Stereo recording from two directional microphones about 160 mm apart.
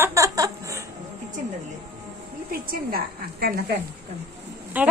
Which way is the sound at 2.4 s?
70° right (ahead or behind).